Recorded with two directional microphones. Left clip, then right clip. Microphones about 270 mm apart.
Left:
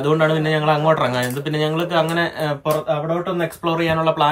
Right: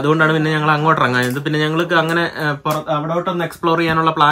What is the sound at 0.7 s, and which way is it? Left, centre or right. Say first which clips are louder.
Speech: right 3 dB; right.